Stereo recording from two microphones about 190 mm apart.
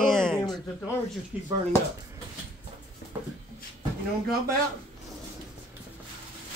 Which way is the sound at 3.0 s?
55° left (ahead or behind).